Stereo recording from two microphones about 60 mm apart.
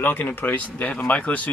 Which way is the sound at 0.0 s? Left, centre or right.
Left.